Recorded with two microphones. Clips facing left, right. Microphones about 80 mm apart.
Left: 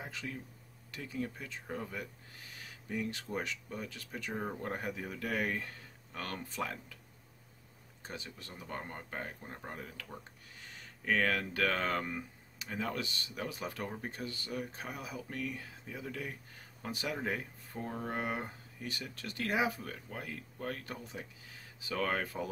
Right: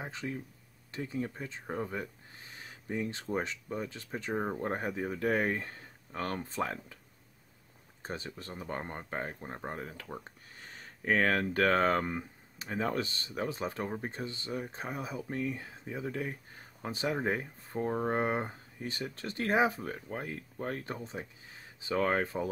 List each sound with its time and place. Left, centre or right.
0.0 s speech: right
8.0 s speech: right